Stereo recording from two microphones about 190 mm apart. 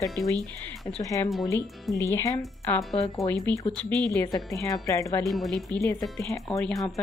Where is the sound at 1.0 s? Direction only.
15° left (ahead or behind).